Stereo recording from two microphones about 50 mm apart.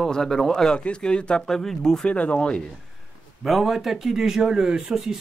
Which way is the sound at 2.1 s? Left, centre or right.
Left.